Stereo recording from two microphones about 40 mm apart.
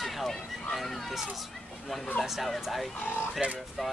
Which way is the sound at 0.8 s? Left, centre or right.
Centre.